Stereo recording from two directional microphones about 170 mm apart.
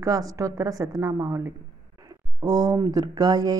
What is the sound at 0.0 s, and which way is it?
Speech, 20° right (ahead or behind).